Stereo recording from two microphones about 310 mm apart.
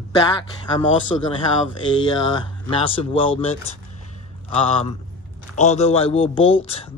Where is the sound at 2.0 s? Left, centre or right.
Centre.